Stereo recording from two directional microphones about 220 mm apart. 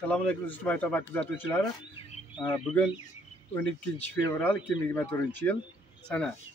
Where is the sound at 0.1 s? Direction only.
5° left (ahead or behind).